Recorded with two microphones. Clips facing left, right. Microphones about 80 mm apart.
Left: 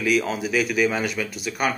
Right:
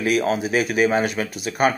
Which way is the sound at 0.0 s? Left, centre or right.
Right.